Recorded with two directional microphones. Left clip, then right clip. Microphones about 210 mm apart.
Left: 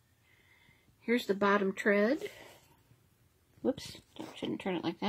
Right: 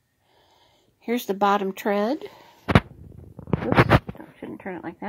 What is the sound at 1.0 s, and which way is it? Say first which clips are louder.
Speech: right 7 dB; 20° right (ahead or behind).